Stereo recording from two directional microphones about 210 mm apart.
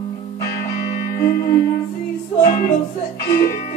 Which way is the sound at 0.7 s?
35° left (ahead or behind).